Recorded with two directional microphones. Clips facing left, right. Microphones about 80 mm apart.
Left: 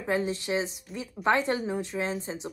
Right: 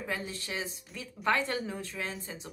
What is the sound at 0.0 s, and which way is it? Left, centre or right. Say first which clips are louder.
Speech: left 8 dB; left.